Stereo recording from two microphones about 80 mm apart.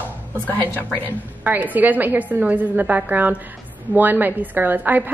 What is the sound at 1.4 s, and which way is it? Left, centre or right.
A woman's voice, right.